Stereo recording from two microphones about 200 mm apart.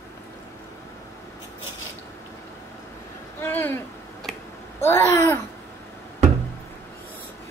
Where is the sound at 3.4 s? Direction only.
10° left (ahead or behind).